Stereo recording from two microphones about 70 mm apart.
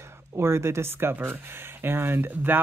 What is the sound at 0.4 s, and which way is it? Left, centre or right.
Speech, right.